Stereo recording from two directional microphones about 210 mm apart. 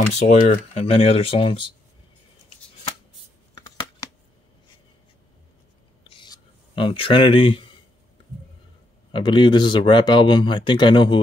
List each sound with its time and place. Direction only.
0.3 s speech: 30° left (ahead or behind)
6.0 s a sound: 20° left (ahead or behind)
9.1 s speech: 20° left (ahead or behind)